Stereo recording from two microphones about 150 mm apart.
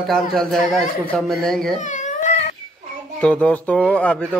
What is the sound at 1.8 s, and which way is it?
Baby cry, 55° left (ahead or behind).